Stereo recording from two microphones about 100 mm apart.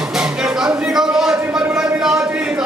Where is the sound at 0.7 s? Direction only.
5° right (ahead or behind).